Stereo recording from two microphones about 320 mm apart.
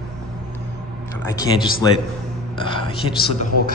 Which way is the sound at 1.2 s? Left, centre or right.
Centre.